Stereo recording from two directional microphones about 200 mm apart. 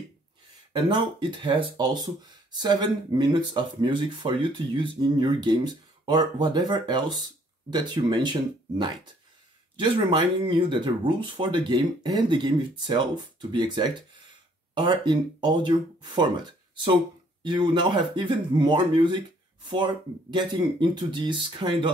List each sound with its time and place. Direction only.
0.7 s speech: 25° right (ahead or behind)